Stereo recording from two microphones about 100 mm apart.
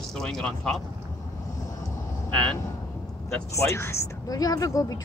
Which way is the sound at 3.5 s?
30° left (ahead or behind).